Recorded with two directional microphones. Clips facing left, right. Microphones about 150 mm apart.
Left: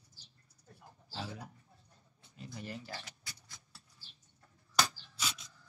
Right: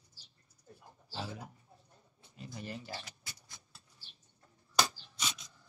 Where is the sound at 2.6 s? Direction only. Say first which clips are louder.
Right 1 dB; 25° right (ahead or behind).